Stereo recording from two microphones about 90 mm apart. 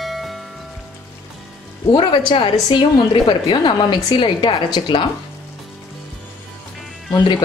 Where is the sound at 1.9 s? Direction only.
65° left (ahead or behind).